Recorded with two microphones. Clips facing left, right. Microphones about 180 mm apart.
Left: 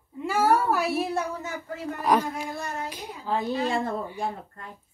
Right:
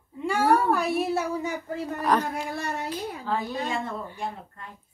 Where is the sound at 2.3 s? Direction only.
60° right (ahead or behind).